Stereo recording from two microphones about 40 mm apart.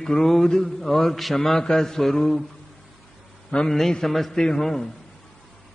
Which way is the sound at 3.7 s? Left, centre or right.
Centre.